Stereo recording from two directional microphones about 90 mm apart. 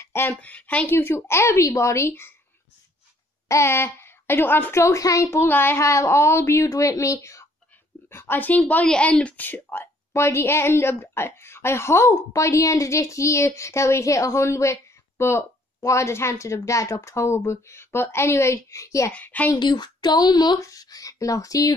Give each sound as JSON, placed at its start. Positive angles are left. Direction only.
{"t": 0.0, "sound": "speech", "side_deg": 25}
{"t": 0.8, "sound": "a woman's voice", "side_deg": 25}
{"t": 3.4, "sound": "speech", "side_deg": 30}
{"t": 4.8, "sound": "a woman's voice", "side_deg": 35}
{"t": 19.1, "sound": "a woman's voice", "side_deg": 20}
{"t": 19.5, "sound": "speech", "side_deg": 55}